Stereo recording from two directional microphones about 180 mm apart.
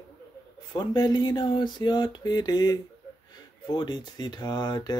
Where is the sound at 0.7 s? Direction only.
25° left (ahead or behind).